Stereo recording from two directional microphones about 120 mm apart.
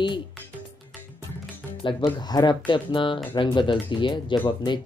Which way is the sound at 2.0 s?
35° left (ahead or behind).